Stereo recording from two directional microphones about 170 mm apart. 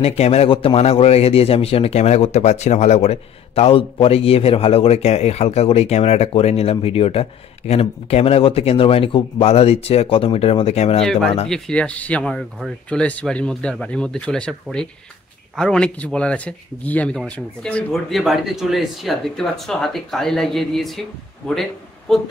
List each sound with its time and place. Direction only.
0.0 s a man's voice: 35° left (ahead or behind)
11.4 s speech: 5° left (ahead or behind)